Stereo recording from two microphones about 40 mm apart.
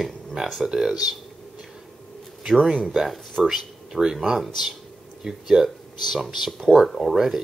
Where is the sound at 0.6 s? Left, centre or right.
Centre.